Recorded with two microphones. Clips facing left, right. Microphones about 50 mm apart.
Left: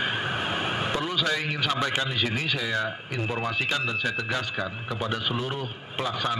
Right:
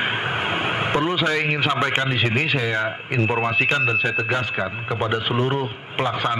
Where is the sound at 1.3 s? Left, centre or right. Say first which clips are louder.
Right 6 dB; right.